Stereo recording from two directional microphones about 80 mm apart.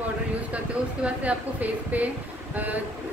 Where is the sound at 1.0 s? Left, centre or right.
Centre.